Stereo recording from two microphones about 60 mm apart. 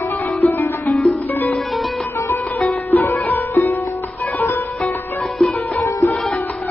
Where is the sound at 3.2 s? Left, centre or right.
Left.